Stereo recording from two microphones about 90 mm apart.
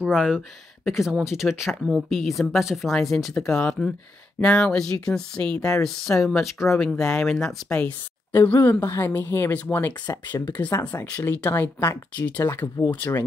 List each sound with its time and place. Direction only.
0.0 s speech: 5° right (ahead or behind); by 7.9 s 10° left (ahead or behind)
8.3 s speech: 30° left (ahead or behind)
12.2 s speech: 15° left (ahead or behind)